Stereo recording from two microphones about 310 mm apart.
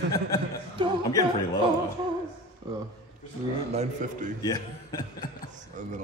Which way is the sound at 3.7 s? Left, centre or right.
Right.